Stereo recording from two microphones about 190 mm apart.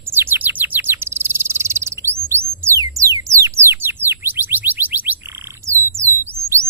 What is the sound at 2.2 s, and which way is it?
Music, 15° right (ahead or behind).